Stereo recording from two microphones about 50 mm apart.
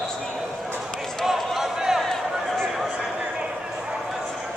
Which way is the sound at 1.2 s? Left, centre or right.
Centre.